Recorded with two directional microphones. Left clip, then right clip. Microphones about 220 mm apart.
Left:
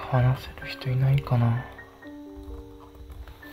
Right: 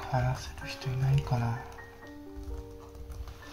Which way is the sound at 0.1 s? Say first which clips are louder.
Left 5 dB; 50° left (ahead or behind).